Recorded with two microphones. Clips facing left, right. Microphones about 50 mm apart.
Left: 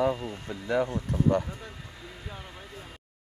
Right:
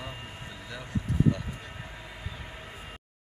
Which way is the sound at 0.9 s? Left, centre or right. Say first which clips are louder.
Left 2 dB; left.